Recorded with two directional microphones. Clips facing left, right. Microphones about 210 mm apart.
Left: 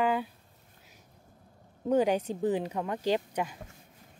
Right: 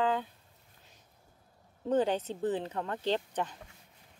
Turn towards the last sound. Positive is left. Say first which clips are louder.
# left 3 dB
turn(degrees=10)  # may be behind; listen again after turning